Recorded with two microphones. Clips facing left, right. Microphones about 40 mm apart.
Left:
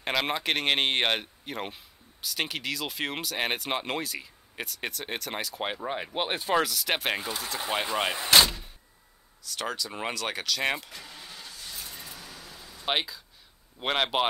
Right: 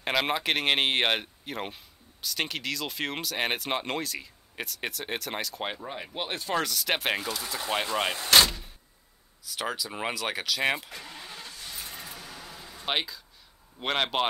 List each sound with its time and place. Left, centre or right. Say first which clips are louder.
0.0 s speech: right 1 dB; centre
5.8 s speech: left 4 dB; left
6.6 s speech: even; centre
10.9 s vehicle: right 2 dB; centre
12.8 s speech: left 1 dB; centre